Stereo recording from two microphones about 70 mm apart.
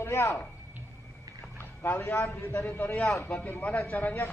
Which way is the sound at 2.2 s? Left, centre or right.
Left.